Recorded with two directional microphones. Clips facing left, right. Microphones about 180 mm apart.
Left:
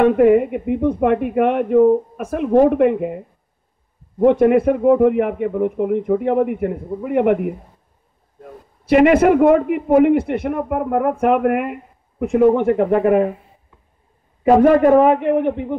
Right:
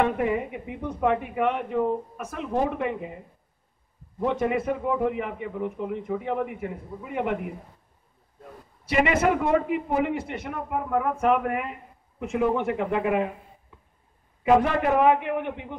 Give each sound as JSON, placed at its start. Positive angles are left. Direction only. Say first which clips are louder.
{"t": 0.0, "sound": "a man's voice", "louder": "left 12 dB", "side_deg": 55}
{"t": 4.2, "sound": "a man's voice", "louder": "left 12 dB", "side_deg": 55}
{"t": 8.8, "sound": "a man's voice", "louder": "left 10 dB", "side_deg": 55}
{"t": 14.4, "sound": "a man's voice", "louder": "left 9 dB", "side_deg": 45}